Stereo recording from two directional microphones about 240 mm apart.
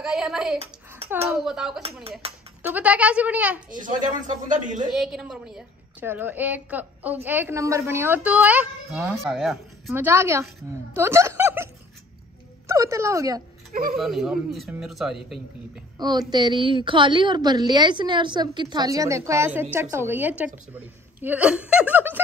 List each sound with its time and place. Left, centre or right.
0.0 s speech: centre
2.1 s speech: right
2.6 s speech: centre
3.8 s speech: right
4.9 s a woman's voice: centre
13.9 s speech: centre
16.0 s a woman's voice: centre